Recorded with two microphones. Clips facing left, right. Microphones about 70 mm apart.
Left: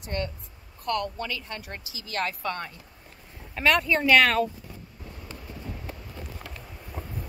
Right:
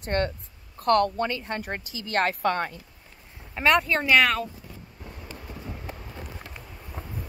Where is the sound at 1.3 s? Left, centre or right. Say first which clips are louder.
Right 5 dB; right.